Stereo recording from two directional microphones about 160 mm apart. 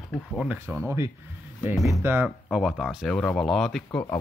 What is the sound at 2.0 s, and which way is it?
Speech, 15° right (ahead or behind).